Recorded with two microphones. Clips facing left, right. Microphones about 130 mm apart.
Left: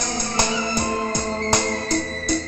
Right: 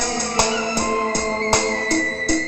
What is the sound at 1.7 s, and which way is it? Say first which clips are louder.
Music: right 2 dB; 20° left (ahead or behind).